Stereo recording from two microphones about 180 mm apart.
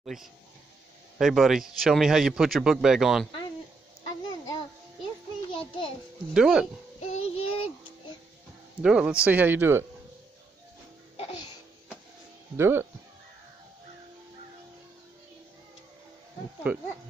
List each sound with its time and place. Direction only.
0.0 s a man's voice: centre (ahead or behind)
4.2 s a sound: 25° left (ahead or behind)
6.3 s a man's voice: 5° right (ahead or behind)
7.0 s child singing: 35° left (ahead or behind)
8.8 s speech: 5° right (ahead or behind)
12.5 s speech: 15° right (ahead or behind)
16.7 s speech: 10° right (ahead or behind)